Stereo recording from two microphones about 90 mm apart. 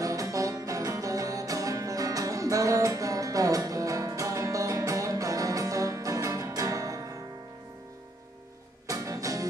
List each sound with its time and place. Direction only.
0.0 s music: 40° right (ahead or behind)
8.8 s music: 40° right (ahead or behind)